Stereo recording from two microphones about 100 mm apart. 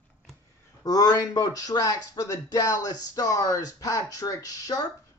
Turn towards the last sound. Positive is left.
turn(degrees=35)  # may be behind; listen again after turning